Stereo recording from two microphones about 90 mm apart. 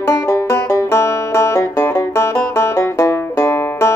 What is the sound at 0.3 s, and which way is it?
Banjo, 35° left (ahead or behind).